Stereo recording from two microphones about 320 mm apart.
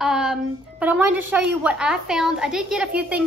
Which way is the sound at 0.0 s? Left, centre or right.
Centre.